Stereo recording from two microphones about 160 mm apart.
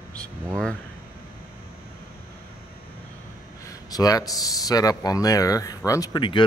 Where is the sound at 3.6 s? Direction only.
25° left (ahead or behind).